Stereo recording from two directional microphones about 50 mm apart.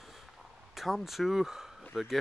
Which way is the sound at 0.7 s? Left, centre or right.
Centre.